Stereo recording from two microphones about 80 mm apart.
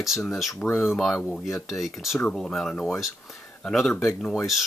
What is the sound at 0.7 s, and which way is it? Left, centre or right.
Speech, left.